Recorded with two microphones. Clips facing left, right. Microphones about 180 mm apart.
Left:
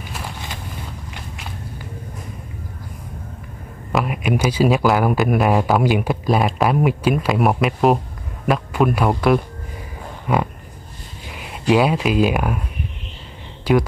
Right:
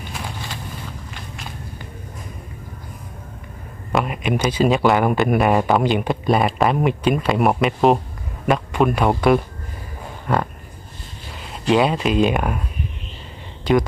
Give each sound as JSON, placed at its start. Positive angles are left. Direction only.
{"t": 3.9, "sound": "speech", "side_deg": 5}
{"t": 10.2, "sound": "a sound", "side_deg": 10}
{"t": 11.2, "sound": "speech", "side_deg": 10}
{"t": 13.7, "sound": "speech", "side_deg": 10}